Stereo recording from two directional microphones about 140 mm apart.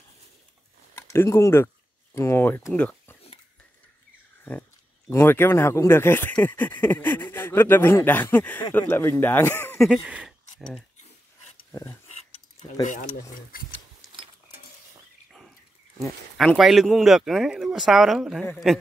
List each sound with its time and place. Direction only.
0.9 s speech: 20° left (ahead or behind)
5.1 s speech: 15° left (ahead or behind)
9.8 s speech: 5° right (ahead or behind)
11.7 s a sound: 20° left (ahead or behind)
12.8 s speech: 60° left (ahead or behind)
16.0 s speech: centre (ahead or behind)